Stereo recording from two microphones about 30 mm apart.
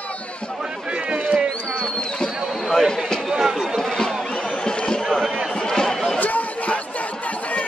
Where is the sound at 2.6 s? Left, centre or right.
Centre.